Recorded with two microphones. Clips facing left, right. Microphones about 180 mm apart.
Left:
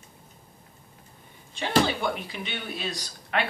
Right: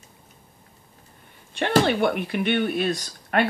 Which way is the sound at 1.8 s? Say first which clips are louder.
Right 5 dB; 60° right (ahead or behind).